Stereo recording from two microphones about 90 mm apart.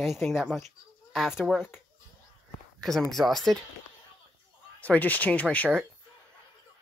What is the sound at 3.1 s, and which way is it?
Speech, 5° left (ahead or behind).